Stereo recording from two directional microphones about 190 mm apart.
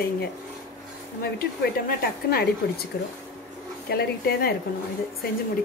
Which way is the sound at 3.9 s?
55° left (ahead or behind).